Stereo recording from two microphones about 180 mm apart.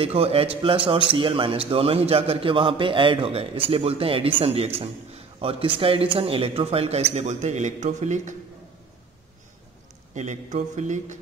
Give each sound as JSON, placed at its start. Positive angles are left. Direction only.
{"t": 0.0, "sound": "a man's voice", "side_deg": -35}
{"t": 10.1, "sound": "a man's voice", "side_deg": -40}